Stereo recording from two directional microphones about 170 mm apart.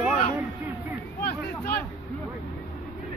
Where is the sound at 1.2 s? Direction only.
65° left (ahead or behind).